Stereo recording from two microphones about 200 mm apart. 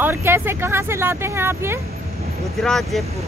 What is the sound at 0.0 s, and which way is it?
Speech, 10° right (ahead or behind).